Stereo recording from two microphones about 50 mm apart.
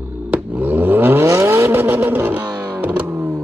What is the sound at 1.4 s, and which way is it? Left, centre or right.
Vehicle, right.